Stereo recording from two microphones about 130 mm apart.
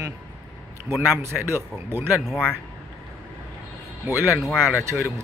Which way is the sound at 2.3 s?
10° left (ahead or behind).